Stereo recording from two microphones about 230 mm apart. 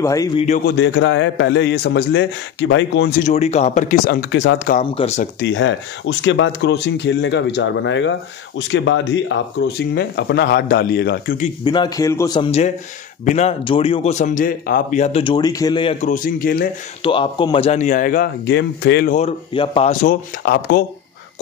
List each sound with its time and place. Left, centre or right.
0.0 s a man's voice: centre
0.5 s speech: left
3.3 s speech: left
4.7 s speech: left
5.5 s speech: left
11.6 s a man's voice: centre; by 16.6 s left
17.0 s speech: left
19.1 s speech: left